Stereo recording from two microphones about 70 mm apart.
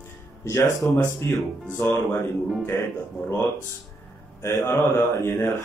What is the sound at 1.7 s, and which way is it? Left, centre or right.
Speech, left.